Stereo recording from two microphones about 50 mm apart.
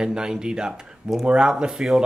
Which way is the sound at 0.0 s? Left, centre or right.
Centre.